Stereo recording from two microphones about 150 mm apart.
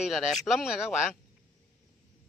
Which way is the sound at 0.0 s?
5° right (ahead or behind).